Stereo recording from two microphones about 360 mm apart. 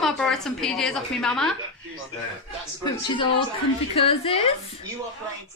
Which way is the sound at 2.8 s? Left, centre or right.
Centre.